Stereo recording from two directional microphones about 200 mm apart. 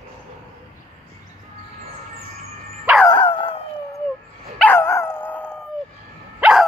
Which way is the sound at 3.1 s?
25° left (ahead or behind).